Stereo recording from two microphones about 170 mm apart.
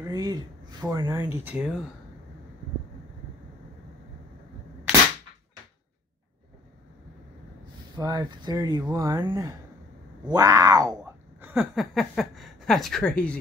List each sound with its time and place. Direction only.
0.1 s speech: 25° right (ahead or behind); by 1.9 s 5° right (ahead or behind)
7.9 s speech: 25° right (ahead or behind)
11.4 s speech: centre (ahead or behind)